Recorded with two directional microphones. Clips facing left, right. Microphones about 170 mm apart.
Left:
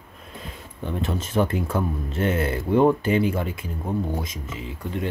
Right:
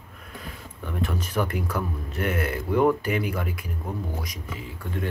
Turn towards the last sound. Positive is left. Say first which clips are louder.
# left 3 dB
turn(degrees=20)  # may be behind; listen again after turning